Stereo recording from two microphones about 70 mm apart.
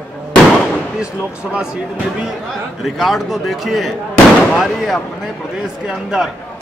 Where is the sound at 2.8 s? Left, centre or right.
Centre.